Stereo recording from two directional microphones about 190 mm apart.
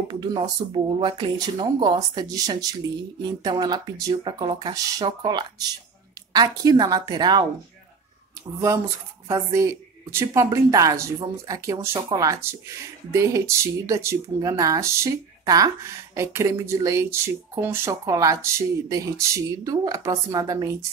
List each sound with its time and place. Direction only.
0.1 s speech: 25° right (ahead or behind)
9.3 s speech: 15° right (ahead or behind)